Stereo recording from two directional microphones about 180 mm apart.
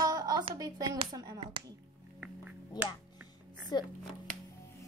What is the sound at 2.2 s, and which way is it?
Music, 10° right (ahead or behind).